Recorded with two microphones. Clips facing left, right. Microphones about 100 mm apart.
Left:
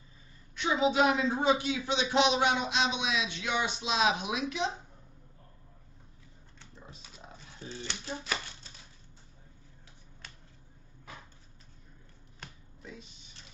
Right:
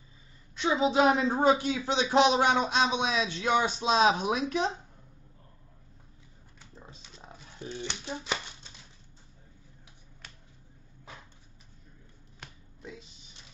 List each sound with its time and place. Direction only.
0.6 s speech: 30° right (ahead or behind)
7.5 s speech: 20° right (ahead or behind)